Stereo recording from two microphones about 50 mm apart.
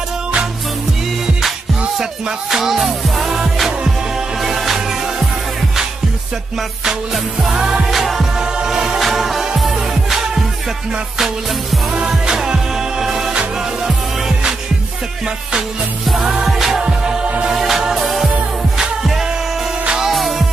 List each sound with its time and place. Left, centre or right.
2.0 s music: centre
7.4 s music: centre
7.9 s music: centre
16.1 s music: centre
16.8 s music: centre
17.5 s music: centre